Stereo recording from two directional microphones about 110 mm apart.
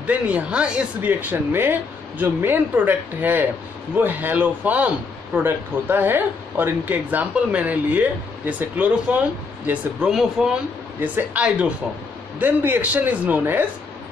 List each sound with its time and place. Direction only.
0.0 s a man's voice: 10° right (ahead or behind)